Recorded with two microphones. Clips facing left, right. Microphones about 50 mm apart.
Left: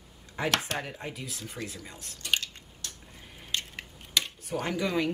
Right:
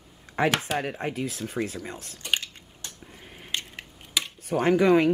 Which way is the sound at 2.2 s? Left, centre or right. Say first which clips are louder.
Right 2 dB; centre.